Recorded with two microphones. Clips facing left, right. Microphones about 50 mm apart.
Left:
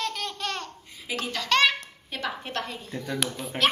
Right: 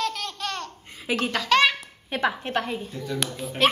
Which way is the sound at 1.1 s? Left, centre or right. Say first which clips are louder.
Right 6 dB; right.